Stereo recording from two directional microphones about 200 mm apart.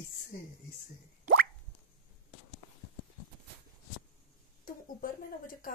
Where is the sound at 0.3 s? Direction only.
45° left (ahead or behind).